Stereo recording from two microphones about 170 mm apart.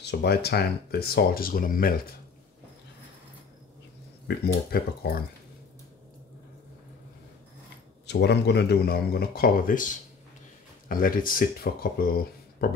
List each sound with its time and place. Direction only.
0.0 s speech: 80° left; by 2.0 s 55° left (ahead or behind)
4.5 s speech: 65° left (ahead or behind)
8.1 s speech: 85° left; by 12.6 s 60° left (ahead or behind)